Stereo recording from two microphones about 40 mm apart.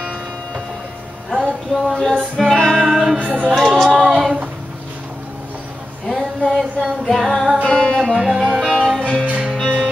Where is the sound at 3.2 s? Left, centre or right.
Right.